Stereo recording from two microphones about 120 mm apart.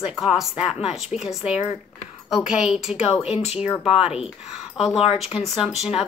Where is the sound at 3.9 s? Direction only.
5° right (ahead or behind).